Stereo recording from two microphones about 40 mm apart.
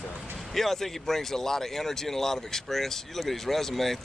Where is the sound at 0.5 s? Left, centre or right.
Centre.